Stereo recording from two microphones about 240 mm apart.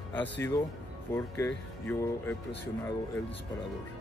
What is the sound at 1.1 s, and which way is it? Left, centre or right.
Speech, centre.